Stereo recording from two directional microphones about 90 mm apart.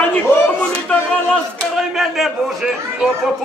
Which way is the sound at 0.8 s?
10° left (ahead or behind).